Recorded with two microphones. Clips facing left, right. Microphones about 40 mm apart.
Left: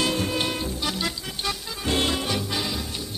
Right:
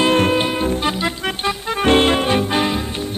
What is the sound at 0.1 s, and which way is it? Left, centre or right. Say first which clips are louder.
Music: right 11 dB; right.